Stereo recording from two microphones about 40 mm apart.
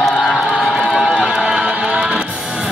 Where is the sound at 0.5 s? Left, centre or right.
Centre.